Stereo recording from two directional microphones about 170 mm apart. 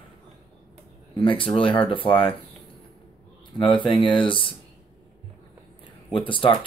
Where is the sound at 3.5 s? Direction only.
30° left (ahead or behind).